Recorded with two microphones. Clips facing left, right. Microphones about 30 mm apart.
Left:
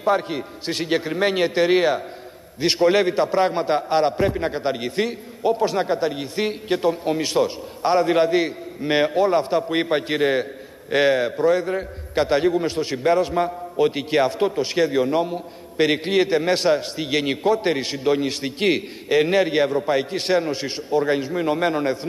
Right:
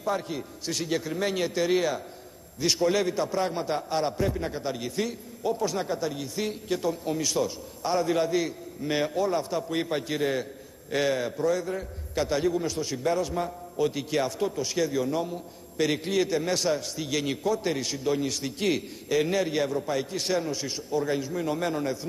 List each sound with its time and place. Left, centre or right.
0.0 s a man's voice: left